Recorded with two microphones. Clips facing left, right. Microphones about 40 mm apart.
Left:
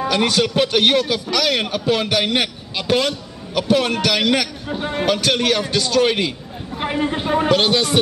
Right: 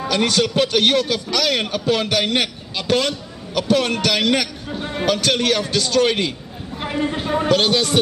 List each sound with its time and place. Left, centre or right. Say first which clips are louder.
0.1 s a man's voice: right 1 dB; centre
6.8 s speech: left 2 dB; left
7.4 s a man's voice: right 1 dB; centre